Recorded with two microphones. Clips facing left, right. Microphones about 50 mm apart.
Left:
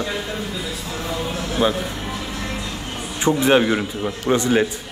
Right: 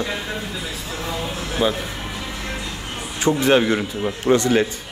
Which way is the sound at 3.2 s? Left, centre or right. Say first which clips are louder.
Even; centre.